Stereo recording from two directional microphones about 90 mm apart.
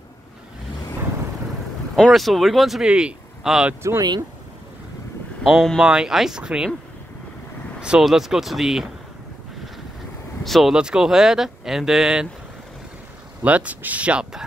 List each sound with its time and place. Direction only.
2.0 s speech: centre (ahead or behind)
5.4 s speech: centre (ahead or behind)
5.8 s speech: 10° right (ahead or behind)
7.8 s speech: 5° right (ahead or behind)
10.4 s speech: centre (ahead or behind)
13.4 s speech: 15° right (ahead or behind)